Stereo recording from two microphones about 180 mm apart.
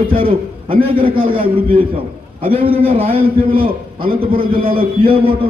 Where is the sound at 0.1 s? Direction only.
30° right (ahead or behind).